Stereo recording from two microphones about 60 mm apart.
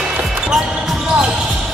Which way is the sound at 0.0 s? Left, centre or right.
Centre.